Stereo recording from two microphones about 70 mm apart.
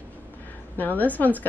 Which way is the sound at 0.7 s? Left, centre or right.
Left.